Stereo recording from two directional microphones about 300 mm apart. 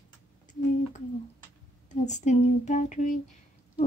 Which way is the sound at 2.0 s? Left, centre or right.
Left.